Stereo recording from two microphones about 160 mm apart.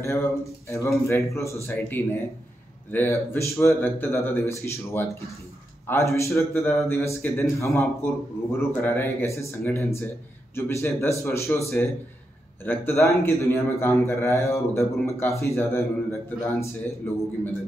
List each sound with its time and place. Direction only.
0.0 s a man's voice: 15° left (ahead or behind)